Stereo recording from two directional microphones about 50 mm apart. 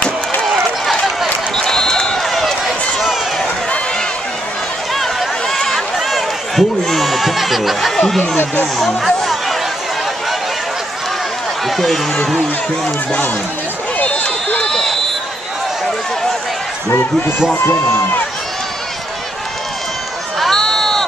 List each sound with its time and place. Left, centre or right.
1.6 s a sound: centre
2.2 s run: centre
4.9 s a sound: centre
8.7 s speech: centre
11.6 s a sound: centre
12.4 s speech: left
13.9 s run: left
17.6 s speech: left
20.3 s run: centre